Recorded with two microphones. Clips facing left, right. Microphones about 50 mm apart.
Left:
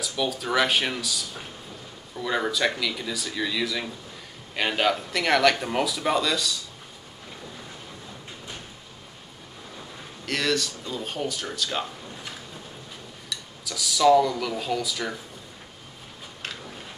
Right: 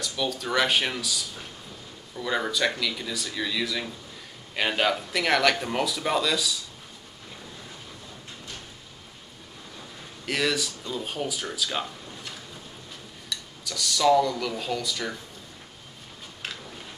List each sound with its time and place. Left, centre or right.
0.0 s speech: centre
10.2 s speech: centre
13.3 s speech: centre